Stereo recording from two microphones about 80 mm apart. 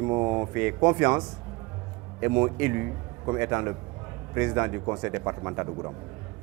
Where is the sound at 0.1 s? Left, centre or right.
Right.